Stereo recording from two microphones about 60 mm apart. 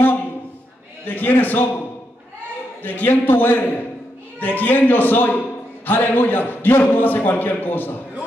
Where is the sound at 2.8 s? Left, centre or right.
Left.